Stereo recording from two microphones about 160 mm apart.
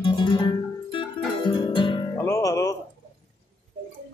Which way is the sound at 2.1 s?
20° left (ahead or behind).